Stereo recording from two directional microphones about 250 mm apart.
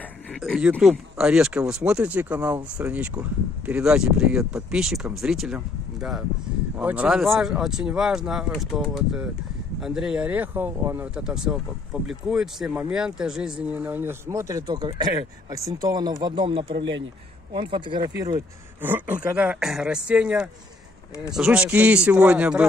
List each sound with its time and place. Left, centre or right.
0.3 s speech: centre